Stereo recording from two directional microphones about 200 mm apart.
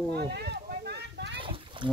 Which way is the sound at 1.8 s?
25° right (ahead or behind).